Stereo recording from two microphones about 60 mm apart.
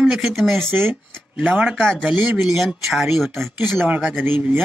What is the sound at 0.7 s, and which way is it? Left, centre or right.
Speech, right.